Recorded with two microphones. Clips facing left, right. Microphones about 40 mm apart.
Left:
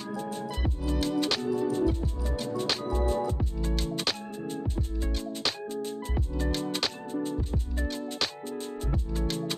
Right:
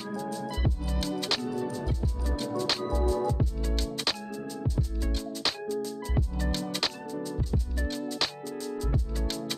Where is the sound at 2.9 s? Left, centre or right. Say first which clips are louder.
Even; left.